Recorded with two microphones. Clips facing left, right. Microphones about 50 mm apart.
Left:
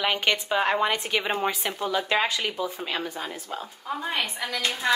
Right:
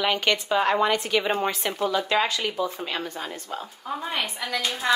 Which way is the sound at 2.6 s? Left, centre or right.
Centre.